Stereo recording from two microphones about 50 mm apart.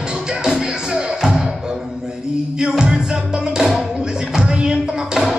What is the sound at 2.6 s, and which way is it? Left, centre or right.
Music, centre.